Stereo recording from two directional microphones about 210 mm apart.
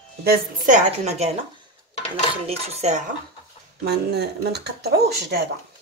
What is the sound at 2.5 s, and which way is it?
Speech, 30° right (ahead or behind).